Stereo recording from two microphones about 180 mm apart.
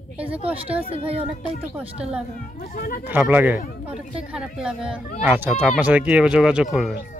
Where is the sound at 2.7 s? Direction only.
55° left (ahead or behind).